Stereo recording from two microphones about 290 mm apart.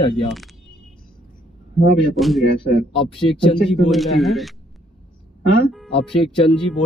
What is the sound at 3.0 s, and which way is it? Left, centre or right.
Speech, centre.